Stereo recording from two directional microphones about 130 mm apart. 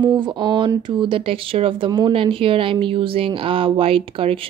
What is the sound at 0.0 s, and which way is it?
Speech, 35° right (ahead or behind).